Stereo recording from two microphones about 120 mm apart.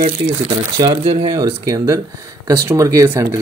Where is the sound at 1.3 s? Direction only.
30° right (ahead or behind).